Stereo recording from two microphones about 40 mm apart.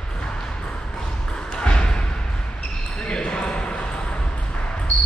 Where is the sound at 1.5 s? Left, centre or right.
Left.